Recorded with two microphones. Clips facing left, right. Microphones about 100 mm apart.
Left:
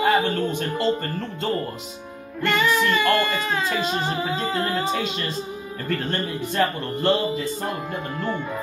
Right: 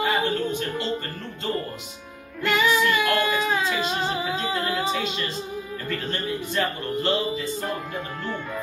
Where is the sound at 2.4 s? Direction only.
5° right (ahead or behind).